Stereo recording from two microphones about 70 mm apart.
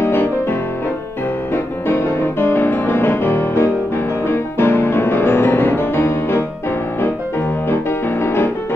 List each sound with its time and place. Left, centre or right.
0.0 s music: left
7.7 s music: left